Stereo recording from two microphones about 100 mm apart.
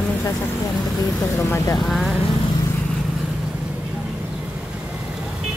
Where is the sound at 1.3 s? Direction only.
30° left (ahead or behind).